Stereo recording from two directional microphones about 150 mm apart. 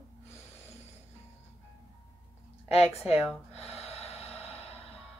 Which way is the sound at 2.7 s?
45° left (ahead or behind).